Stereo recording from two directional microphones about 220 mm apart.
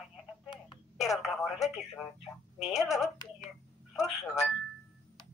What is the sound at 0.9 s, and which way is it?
Telephone, centre (ahead or behind).